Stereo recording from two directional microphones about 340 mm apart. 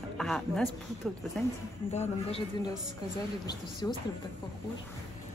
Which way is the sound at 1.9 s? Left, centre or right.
Centre.